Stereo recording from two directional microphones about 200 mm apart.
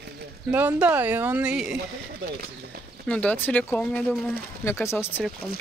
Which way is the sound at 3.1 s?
5° left (ahead or behind).